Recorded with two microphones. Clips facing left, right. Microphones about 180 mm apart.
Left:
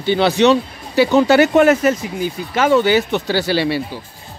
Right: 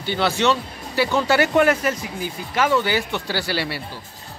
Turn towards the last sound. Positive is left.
turn(degrees=20)  # may be behind; listen again after turning